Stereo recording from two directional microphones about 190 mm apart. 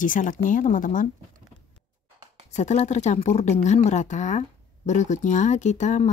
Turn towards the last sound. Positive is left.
turn(degrees=40)  # may be behind; listen again after turning